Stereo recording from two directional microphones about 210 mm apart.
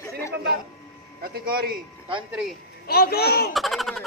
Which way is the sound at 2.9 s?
50° left (ahead or behind).